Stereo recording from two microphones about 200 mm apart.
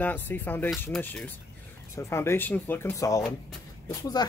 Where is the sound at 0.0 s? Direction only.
10° left (ahead or behind).